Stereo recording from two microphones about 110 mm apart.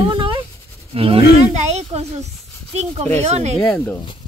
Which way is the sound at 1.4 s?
80° right.